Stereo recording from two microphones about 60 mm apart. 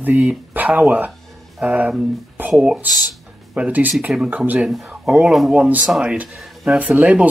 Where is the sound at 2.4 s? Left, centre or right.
Right.